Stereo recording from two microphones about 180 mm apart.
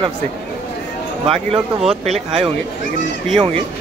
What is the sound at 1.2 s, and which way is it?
Speech, 30° right (ahead or behind).